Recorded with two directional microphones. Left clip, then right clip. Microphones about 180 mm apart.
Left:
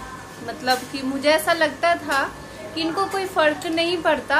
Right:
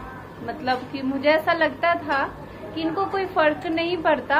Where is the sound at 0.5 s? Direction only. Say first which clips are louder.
Left 3 dB; 20° left (ahead or behind).